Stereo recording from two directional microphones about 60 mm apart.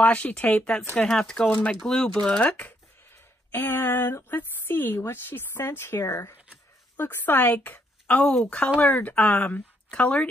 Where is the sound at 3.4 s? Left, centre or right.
Left.